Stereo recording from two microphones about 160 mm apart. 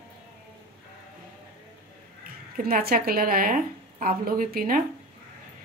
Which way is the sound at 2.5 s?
70° right (ahead or behind).